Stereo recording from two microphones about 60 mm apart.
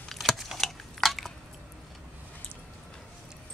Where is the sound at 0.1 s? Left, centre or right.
Centre.